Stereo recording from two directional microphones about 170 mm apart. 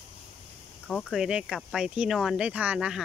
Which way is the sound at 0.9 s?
Centre (ahead or behind).